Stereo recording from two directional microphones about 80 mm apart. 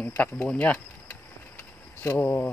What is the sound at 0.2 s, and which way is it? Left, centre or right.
Speech, centre.